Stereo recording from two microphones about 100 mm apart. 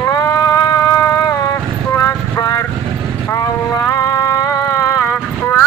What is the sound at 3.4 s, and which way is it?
Music, 30° left (ahead or behind).